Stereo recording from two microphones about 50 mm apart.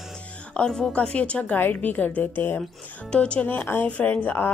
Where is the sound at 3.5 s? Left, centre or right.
Left.